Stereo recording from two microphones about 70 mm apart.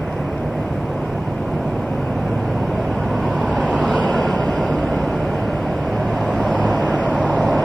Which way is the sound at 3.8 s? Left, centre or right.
Centre.